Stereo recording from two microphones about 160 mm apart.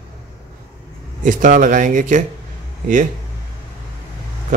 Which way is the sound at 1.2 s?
55° right (ahead or behind).